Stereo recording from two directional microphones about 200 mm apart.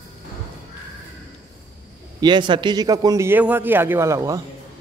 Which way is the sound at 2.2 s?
20° right (ahead or behind).